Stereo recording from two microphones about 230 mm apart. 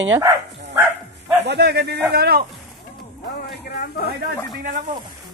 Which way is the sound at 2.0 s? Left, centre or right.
Right.